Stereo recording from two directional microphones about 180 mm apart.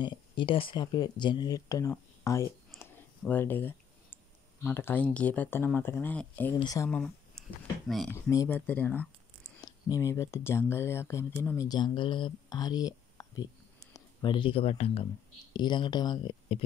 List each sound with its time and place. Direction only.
0.0 s speech: 25° left (ahead or behind); by 6.5 s 10° left (ahead or behind)
6.6 s speech: 20° left (ahead or behind)
6.9 s a sound: centre (ahead or behind)
8.1 s speech: 15° left (ahead or behind)
9.6 s speech: 20° left (ahead or behind)